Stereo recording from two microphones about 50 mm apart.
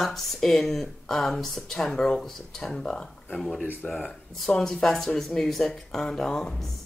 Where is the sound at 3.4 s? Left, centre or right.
Centre.